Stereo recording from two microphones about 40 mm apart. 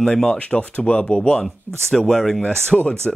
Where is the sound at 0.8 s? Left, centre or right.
Left.